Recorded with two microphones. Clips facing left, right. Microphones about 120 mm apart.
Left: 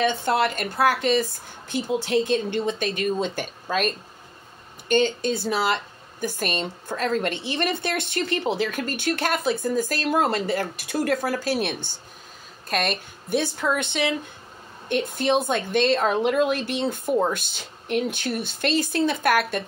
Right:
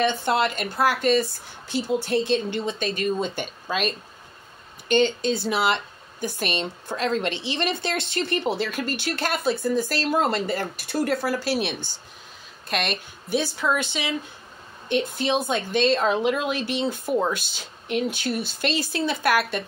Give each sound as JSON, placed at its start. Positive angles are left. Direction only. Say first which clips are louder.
{"t": 0.0, "sound": "speech", "louder": "even", "side_deg": 50}
{"t": 10.5, "sound": "speech", "louder": "left 1 dB", "side_deg": 45}